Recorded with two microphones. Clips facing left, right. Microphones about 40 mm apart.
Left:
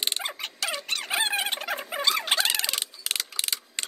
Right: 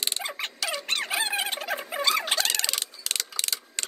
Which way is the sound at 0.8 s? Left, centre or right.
Right.